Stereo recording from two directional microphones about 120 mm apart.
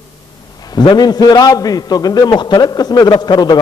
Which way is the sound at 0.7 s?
35° left (ahead or behind).